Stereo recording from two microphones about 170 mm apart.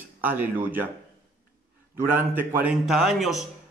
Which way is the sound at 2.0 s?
10° right (ahead or behind).